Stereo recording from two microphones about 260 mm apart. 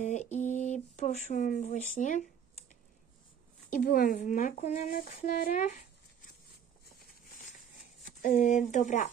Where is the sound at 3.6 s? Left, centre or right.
Left.